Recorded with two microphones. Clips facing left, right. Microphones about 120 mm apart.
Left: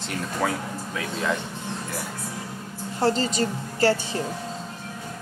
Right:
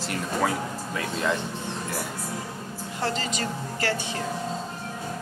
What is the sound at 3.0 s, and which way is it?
A woman's voice, 35° left (ahead or behind).